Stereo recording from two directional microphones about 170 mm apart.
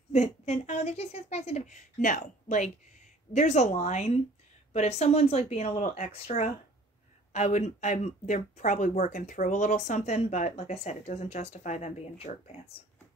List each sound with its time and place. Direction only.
0.1 s a woman's voice: 40° left (ahead or behind)